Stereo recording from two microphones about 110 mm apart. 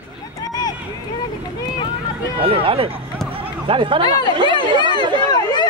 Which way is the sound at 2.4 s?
60° right (ahead or behind).